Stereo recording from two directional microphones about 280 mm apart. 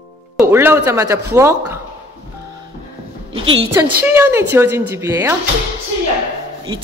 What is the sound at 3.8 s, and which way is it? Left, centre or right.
A woman's voice, centre.